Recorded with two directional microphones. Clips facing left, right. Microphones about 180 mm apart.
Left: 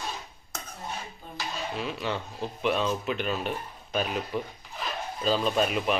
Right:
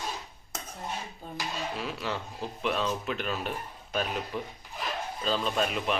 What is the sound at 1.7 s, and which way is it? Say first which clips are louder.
Speech: left 2 dB; centre (ahead or behind).